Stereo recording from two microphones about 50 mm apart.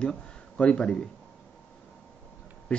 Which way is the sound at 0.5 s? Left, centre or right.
Left.